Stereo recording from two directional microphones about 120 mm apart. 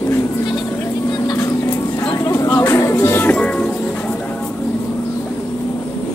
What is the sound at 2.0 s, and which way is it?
Music, 25° left (ahead or behind).